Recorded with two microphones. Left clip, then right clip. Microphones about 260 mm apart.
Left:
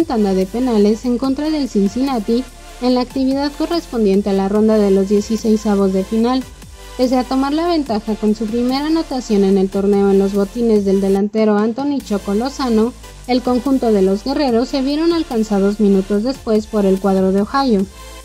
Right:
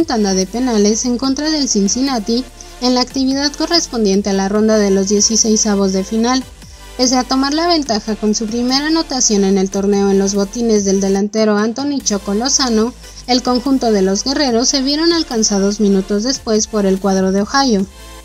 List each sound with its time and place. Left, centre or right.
0.1 s a woman's voice: right
5.2 s speech: centre
5.7 s a woman's voice: right